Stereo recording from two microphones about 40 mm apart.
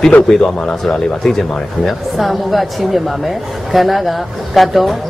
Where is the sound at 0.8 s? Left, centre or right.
Centre.